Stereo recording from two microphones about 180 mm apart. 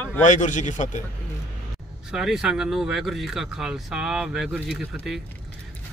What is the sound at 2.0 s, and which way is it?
Speech, 5° right (ahead or behind).